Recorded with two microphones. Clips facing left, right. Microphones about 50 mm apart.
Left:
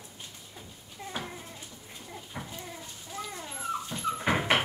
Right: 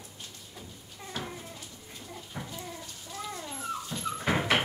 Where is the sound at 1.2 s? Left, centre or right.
Centre.